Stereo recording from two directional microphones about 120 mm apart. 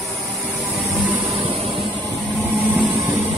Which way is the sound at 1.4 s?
45° right (ahead or behind).